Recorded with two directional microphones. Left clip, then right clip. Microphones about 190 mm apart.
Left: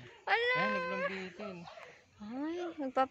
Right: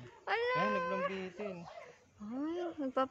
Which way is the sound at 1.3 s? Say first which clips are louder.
Right 2 dB; 15° right (ahead or behind).